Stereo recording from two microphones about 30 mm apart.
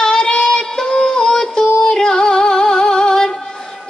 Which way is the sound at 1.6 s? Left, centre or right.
Left.